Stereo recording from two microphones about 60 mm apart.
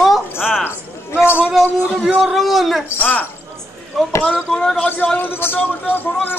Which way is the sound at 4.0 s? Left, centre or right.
Centre.